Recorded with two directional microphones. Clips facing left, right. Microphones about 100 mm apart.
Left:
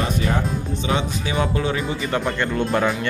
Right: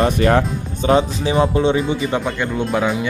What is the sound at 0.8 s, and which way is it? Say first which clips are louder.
Speech: right 10 dB; 40° right (ahead or behind).